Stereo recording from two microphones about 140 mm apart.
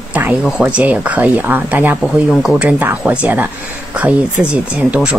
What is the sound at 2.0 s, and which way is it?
Speech, centre (ahead or behind).